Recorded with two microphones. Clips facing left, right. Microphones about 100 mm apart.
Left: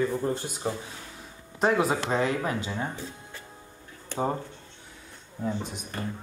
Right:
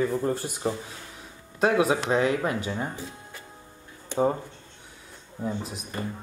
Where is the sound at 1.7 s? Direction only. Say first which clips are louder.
Right 3 dB; centre (ahead or behind).